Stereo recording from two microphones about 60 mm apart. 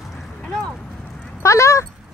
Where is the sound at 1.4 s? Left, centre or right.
Left.